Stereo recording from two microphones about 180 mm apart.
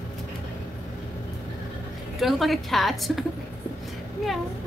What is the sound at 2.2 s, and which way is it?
A woman's voice, centre (ahead or behind).